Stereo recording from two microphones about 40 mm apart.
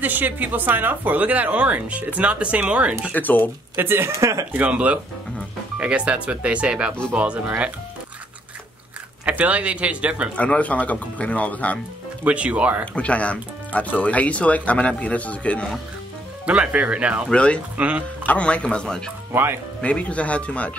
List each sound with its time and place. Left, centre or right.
0.0 s speech: right
3.1 s speech: left
3.7 s speech: right
4.5 s speech: right
7.2 s speech: right
9.3 s speech: right
10.3 s speech: left
12.3 s speech: right
12.8 s speech: left
16.4 s speech: right
17.3 s speech: left
17.7 s speech: right
18.2 s speech: left
19.8 s speech: left